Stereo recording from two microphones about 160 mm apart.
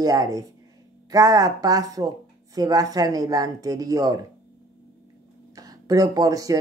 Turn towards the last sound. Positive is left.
turn(degrees=-20)  # may be behind; listen again after turning